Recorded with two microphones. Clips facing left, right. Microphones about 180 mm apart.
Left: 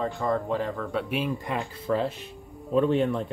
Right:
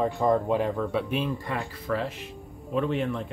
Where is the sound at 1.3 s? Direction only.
20° left (ahead or behind).